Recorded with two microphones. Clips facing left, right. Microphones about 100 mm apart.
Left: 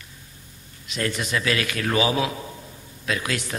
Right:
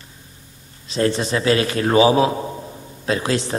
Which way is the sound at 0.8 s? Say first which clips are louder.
Right 8 dB; 30° right (ahead or behind).